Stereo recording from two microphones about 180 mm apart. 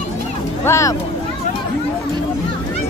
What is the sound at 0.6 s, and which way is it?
Speech, 15° left (ahead or behind).